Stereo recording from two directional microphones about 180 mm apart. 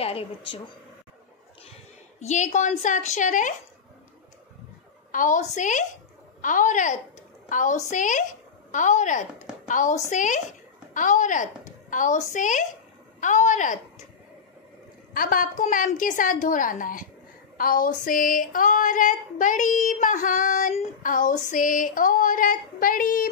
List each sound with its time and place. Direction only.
0.0 s a woman's voice: 30° left (ahead or behind)
2.1 s female singing: 40° left (ahead or behind)
5.1 s female singing: 45° left (ahead or behind)
7.4 s a woman's voice: 45° left (ahead or behind)
9.7 s female singing: 45° left (ahead or behind)
15.1 s female singing: 50° left (ahead or behind)